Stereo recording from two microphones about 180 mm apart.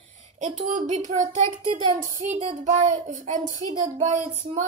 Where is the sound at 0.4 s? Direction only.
45° right (ahead or behind).